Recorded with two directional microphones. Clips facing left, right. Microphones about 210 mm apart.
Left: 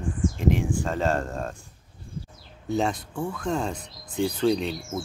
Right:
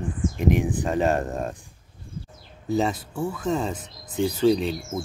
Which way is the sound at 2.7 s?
5° right (ahead or behind).